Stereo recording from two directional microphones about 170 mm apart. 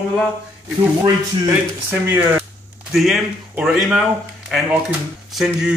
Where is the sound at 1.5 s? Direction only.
15° right (ahead or behind).